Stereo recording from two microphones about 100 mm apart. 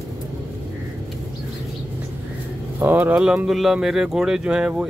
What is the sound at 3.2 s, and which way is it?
Speech, 10° right (ahead or behind).